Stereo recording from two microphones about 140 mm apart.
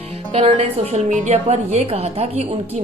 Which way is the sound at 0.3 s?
50° right (ahead or behind).